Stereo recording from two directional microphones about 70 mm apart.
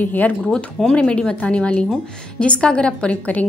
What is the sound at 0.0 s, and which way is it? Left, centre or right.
Speech, left.